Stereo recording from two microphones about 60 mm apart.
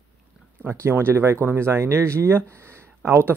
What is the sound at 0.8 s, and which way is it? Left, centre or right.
Speech, right.